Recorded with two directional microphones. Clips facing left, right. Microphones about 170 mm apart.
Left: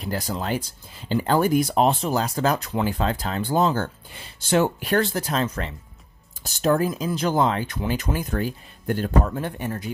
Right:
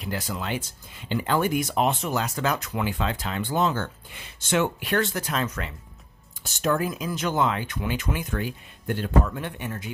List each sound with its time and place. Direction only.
0.0 s speech: 35° left (ahead or behind)